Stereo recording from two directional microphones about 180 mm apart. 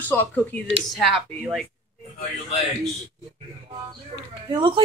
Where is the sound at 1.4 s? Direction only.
Centre (ahead or behind).